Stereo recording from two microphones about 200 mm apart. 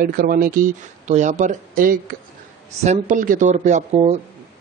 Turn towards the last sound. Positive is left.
turn(degrees=-35)  # may be behind; listen again after turning